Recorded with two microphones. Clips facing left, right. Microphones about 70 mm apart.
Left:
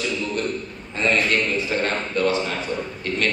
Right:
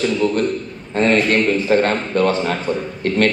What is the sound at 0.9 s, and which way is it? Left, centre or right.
A man's voice, right.